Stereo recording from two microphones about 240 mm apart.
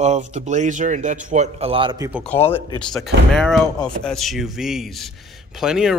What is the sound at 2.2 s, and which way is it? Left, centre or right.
A man's voice, centre.